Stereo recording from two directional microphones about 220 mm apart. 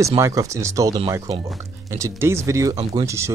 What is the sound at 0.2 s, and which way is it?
Speech, 15° right (ahead or behind).